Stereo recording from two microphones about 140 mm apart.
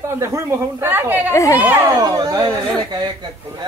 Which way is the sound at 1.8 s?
25° right (ahead or behind).